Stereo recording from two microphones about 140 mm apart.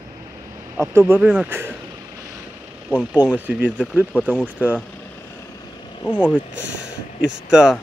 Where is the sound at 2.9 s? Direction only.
10° right (ahead or behind).